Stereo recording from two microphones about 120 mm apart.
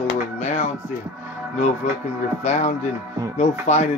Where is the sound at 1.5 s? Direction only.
85° left.